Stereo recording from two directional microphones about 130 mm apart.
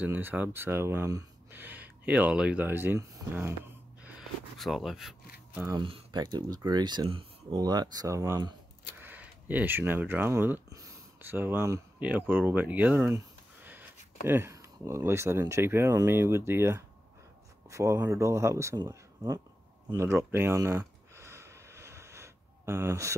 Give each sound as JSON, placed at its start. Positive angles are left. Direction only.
{"t": 0.0, "sound": "speech", "side_deg": -15}
{"t": 4.0, "sound": "a sound", "side_deg": -5}
{"t": 5.8, "sound": "speech", "side_deg": -40}
{"t": 7.5, "sound": "speech", "side_deg": -30}
{"t": 14.2, "sound": "speech", "side_deg": -20}
{"t": 19.9, "sound": "a sound", "side_deg": -20}